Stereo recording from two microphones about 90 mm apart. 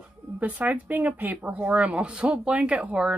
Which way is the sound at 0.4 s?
15° right (ahead or behind).